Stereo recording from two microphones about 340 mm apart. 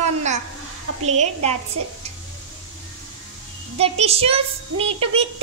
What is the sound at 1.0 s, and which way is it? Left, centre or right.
Speech, centre.